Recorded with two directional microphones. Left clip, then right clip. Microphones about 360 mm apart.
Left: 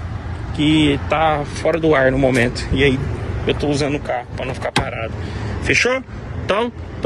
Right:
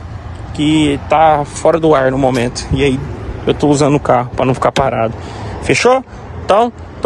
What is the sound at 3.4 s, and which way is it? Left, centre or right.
Speech, centre.